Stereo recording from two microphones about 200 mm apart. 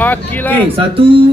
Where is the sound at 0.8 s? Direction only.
25° right (ahead or behind).